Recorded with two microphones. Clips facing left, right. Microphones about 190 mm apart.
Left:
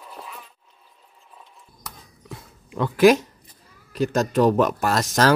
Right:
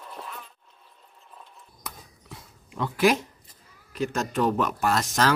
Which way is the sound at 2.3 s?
55° left (ahead or behind).